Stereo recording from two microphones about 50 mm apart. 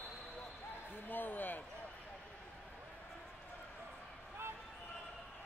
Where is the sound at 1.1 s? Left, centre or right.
Left.